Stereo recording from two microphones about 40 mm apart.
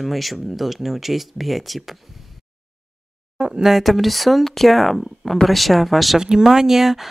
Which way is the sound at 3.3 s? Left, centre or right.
Centre.